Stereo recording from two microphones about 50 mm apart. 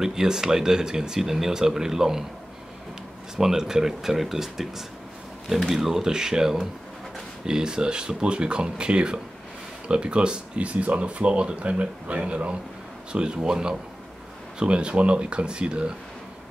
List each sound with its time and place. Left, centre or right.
0.0 s speech: centre
3.3 s speech: centre